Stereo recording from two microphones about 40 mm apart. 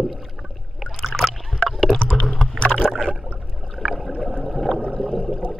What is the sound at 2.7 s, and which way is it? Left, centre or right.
Rowboat, centre.